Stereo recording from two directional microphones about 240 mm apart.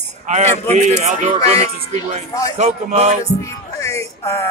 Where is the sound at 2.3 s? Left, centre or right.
Centre.